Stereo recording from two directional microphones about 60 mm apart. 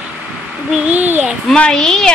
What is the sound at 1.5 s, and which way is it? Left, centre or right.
Speech, centre.